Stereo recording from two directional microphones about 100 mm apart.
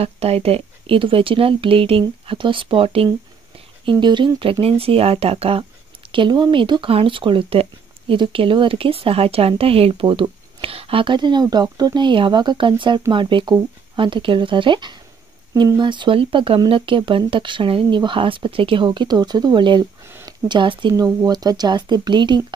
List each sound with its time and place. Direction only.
0.0 s speech: 90° right; by 3.1 s 70° right (ahead or behind)
3.8 s speech: 50° right (ahead or behind); by 5.7 s 70° right (ahead or behind)
6.1 s speech: 50° right (ahead or behind); by 10.0 s 70° right (ahead or behind)
10.0 s speech: 55° right (ahead or behind)
18.9 s speech: 45° right (ahead or behind)
20.9 s speech: 35° right (ahead or behind)